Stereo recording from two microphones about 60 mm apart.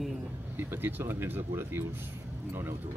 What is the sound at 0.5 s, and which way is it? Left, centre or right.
Speech, right.